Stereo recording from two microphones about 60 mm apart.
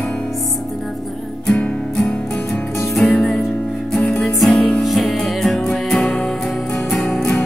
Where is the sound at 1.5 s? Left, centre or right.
Centre.